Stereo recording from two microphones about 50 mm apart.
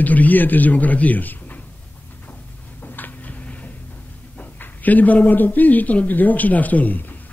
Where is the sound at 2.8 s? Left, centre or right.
Left.